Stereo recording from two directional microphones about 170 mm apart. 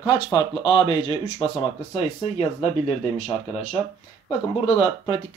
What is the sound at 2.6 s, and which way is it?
Speech, 35° left (ahead or behind).